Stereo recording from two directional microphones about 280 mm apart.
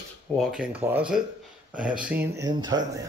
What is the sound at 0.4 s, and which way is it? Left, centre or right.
Speech, centre.